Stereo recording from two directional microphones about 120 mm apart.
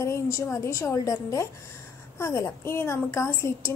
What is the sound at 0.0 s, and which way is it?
A woman's voice, 25° left (ahead or behind).